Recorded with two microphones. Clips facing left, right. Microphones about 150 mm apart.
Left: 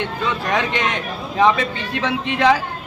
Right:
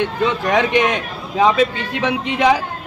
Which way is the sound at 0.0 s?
20° right (ahead or behind).